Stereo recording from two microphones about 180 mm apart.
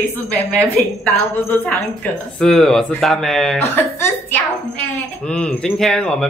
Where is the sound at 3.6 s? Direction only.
10° left (ahead or behind).